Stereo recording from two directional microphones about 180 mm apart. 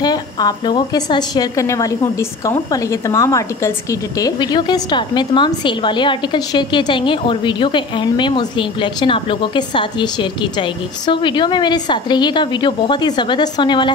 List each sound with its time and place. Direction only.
0.0 s a woman's voice: 25° left (ahead or behind)